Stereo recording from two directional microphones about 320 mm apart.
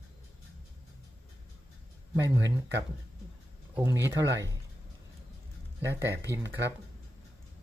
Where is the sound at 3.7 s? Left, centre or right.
Centre.